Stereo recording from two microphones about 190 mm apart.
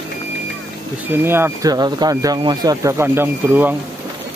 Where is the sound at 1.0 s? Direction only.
10° right (ahead or behind).